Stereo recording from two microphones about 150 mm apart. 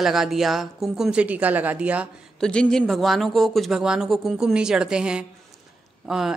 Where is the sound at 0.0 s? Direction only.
Centre (ahead or behind).